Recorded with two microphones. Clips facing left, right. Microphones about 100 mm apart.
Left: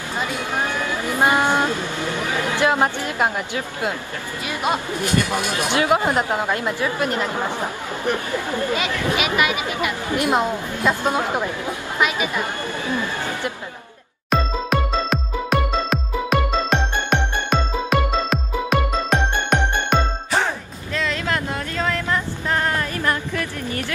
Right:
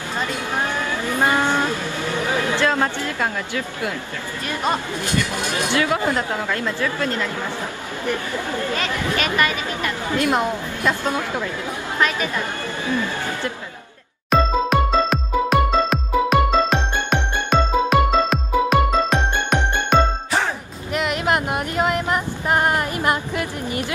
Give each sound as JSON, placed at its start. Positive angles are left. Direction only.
{"t": 0.2, "sound": "speech", "side_deg": 15}
{"t": 14.3, "sound": "music", "side_deg": 0}
{"t": 20.9, "sound": "a sound", "side_deg": -20}